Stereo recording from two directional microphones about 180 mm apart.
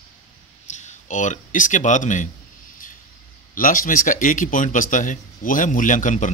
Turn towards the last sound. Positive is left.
turn(degrees=45)  # may be behind; listen again after turning